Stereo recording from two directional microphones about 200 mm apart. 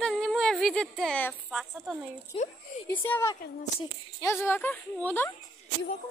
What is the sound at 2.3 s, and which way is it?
Speech, 25° left (ahead or behind).